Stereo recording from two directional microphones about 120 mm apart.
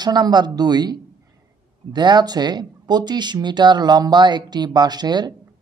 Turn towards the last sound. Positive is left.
turn(degrees=-35)  # may be behind; listen again after turning